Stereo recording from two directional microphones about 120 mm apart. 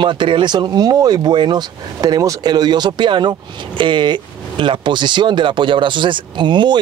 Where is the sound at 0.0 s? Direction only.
40° right (ahead or behind).